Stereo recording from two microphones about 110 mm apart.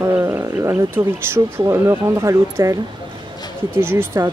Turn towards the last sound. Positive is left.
turn(degrees=-25)  # may be behind; listen again after turning